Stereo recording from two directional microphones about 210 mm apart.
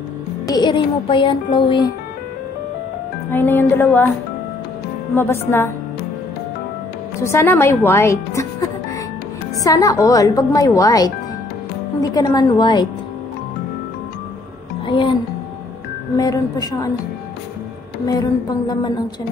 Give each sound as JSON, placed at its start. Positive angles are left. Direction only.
{"t": 0.5, "sound": "music", "side_deg": 20}
{"t": 3.3, "sound": "a woman's voice", "side_deg": 10}
{"t": 5.1, "sound": "a woman's voice", "side_deg": 10}
{"t": 7.2, "sound": "a woman's voice", "side_deg": 10}
{"t": 14.9, "sound": "music", "side_deg": 25}
{"t": 16.2, "sound": "a woman's voice", "side_deg": 15}